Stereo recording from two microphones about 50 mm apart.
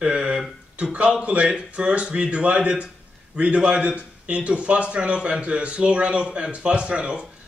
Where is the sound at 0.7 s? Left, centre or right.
Right.